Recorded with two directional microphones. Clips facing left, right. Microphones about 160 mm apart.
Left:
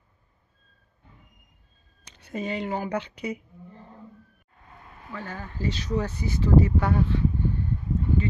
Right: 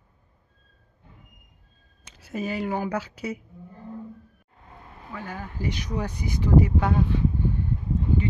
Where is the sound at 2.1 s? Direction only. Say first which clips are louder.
Right 1 dB; 5° right (ahead or behind).